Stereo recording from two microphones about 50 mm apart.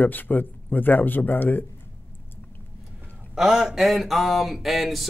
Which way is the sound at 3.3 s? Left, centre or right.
Centre.